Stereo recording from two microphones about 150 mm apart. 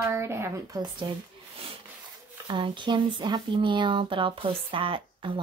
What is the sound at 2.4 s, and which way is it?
Speech, 30° right (ahead or behind).